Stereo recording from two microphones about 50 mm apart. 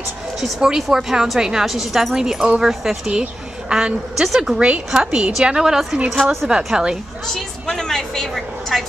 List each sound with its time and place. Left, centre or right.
0.6 s a woman's voice: centre
7.6 s speech: centre